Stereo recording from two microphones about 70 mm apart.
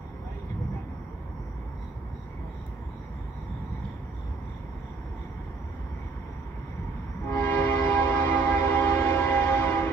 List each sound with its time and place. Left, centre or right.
7.2 s train: left